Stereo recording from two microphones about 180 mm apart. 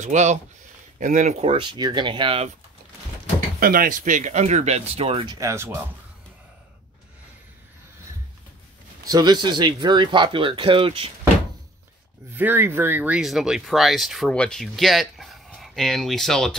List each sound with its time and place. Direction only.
0.0 s speech: 40° right (ahead or behind)
3.5 s speech: 55° right (ahead or behind); by 5.8 s 15° right (ahead or behind)
9.0 s speech: 20° right (ahead or behind)
12.4 s speech: 10° right (ahead or behind)